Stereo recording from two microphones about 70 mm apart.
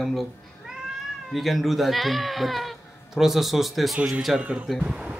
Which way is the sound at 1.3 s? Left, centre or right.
Centre.